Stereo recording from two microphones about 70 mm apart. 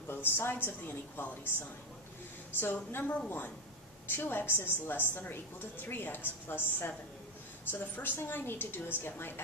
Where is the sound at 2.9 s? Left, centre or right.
Left.